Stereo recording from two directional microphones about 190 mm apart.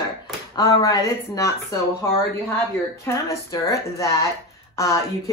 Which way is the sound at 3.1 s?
10° left (ahead or behind).